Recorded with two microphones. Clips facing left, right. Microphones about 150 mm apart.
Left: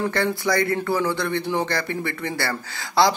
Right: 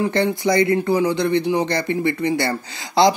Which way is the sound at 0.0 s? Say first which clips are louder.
Right 4 dB; 20° right (ahead or behind).